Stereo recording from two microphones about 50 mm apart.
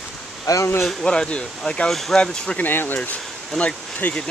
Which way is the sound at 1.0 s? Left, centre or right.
Centre.